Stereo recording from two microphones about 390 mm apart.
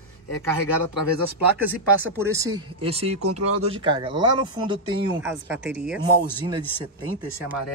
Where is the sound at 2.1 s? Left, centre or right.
Centre.